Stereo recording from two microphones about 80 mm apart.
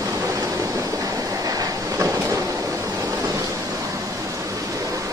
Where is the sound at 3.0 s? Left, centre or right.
Right.